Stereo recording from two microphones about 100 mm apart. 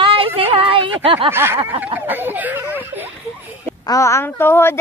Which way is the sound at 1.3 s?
25° right (ahead or behind).